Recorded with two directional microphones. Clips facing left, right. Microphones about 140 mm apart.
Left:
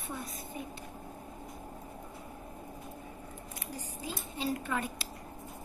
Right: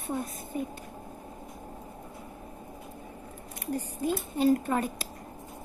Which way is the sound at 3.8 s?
55° right (ahead or behind).